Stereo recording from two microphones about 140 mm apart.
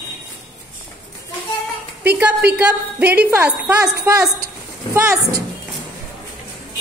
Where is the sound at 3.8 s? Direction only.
25° right (ahead or behind).